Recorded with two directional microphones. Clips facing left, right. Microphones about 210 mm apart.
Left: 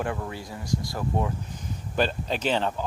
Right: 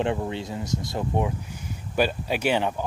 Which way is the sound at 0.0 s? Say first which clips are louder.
Right 5 dB; 25° right (ahead or behind).